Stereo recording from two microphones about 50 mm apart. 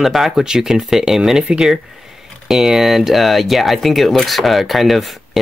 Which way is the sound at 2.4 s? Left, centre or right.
Centre.